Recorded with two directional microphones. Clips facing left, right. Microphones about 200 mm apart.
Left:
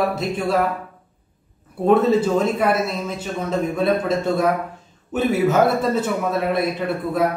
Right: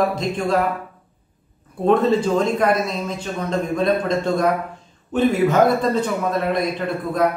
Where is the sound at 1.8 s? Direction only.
5° left (ahead or behind).